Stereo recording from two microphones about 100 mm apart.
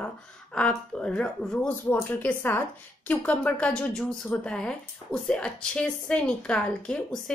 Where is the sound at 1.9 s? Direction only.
20° left (ahead or behind).